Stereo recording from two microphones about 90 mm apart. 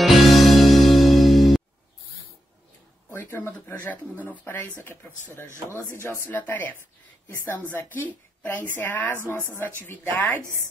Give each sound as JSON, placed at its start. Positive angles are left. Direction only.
{"t": 0.0, "sound": "music", "side_deg": 0}
{"t": 3.1, "sound": "speech", "side_deg": 20}
{"t": 5.9, "sound": "speech", "side_deg": 25}